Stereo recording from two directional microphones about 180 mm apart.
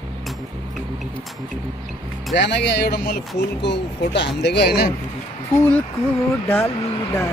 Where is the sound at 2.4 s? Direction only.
70° left (ahead or behind).